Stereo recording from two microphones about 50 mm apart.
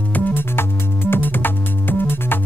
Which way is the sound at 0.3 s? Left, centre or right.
Left.